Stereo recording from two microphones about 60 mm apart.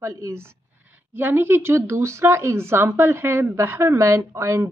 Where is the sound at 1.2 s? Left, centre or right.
Right.